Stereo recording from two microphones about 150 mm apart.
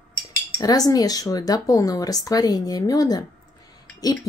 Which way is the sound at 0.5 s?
25° left (ahead or behind).